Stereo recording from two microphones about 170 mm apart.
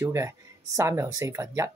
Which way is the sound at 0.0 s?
15° right (ahead or behind).